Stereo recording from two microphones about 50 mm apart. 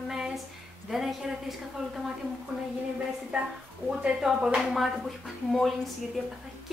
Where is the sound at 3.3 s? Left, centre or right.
Right.